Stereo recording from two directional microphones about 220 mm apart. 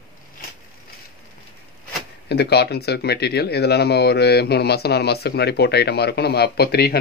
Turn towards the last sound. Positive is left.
turn(degrees=45)  # may be behind; listen again after turning